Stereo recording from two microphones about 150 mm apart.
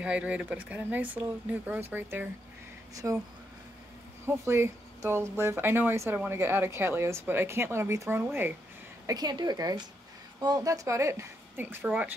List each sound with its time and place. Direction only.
0.0 s speech: 10° right (ahead or behind)
4.3 s speech: 15° right (ahead or behind)
9.0 s speech: 25° right (ahead or behind); by 12.2 s 10° right (ahead or behind)